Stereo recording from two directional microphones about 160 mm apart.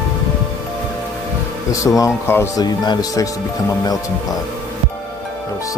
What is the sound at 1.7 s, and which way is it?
Speech, 20° left (ahead or behind).